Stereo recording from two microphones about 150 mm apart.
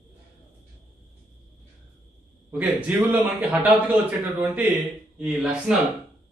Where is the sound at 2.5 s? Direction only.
10° right (ahead or behind).